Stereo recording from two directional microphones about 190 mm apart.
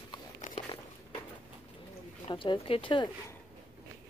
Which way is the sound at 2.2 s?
25° left (ahead or behind).